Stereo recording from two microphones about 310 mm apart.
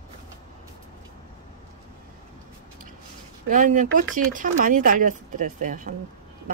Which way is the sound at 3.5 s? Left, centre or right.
Right.